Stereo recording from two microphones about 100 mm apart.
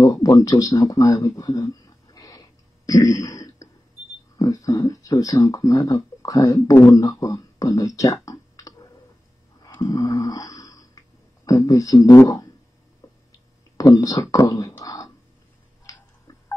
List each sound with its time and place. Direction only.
0.1 s speech: 35° left (ahead or behind)
2.9 s throat clearing: 35° left (ahead or behind)
4.4 s speech: 35° left (ahead or behind)
9.8 s a sound: 40° left (ahead or behind)
11.4 s speech: 35° left (ahead or behind)
13.0 s a sound: 30° left (ahead or behind)
13.7 s speech: 35° left (ahead or behind)